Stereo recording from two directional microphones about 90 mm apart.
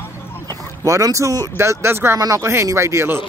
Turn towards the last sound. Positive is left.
turn(degrees=-30)  # may be behind; listen again after turning